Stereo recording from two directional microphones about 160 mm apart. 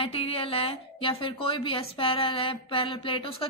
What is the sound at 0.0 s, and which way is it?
Speech, 35° left (ahead or behind).